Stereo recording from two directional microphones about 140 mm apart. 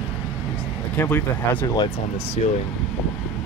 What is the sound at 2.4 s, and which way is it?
Speech, 55° left (ahead or behind).